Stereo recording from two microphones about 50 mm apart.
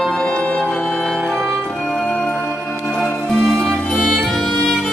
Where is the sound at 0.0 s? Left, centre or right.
Centre.